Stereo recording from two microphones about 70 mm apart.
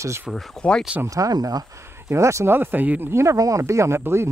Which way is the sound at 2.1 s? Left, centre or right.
Right.